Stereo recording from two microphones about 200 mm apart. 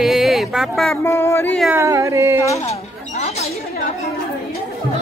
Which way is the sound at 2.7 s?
35° left (ahead or behind).